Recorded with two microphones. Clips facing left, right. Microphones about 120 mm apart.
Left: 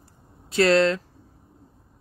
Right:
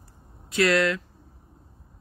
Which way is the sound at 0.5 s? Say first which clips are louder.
Left 3 dB; 30° left (ahead or behind).